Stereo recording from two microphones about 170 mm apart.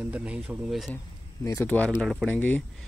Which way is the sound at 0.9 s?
15° left (ahead or behind).